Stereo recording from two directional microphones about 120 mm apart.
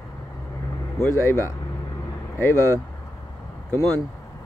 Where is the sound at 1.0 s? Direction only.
20° left (ahead or behind).